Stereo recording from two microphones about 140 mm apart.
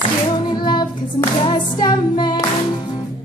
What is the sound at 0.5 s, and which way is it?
Music, 30° left (ahead or behind).